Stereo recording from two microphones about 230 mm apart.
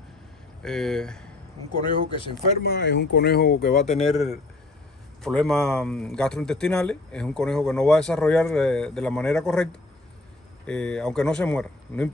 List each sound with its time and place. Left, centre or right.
0.6 s speech: centre
1.8 s speech: left
2.6 s speech: left
4.0 s speech: centre